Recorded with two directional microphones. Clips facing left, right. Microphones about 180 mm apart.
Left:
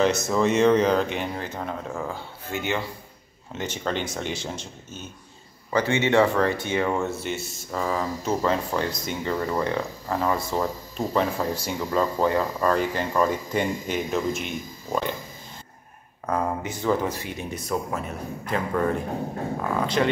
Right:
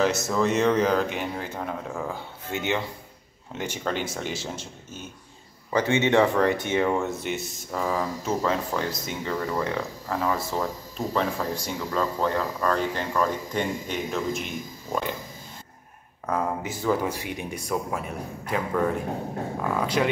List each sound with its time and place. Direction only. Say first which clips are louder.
0.0 s speech: left 2 dB; 5° right (ahead or behind)
2.1 s speech: even; 20° right (ahead or behind)
5.7 s speech: even; 20° right (ahead or behind)
7.7 s speech: even; 5° right (ahead or behind)
16.3 s speech: left 1 dB; centre (ahead or behind)
20.0 s speech: left 1 dB; 5° right (ahead or behind)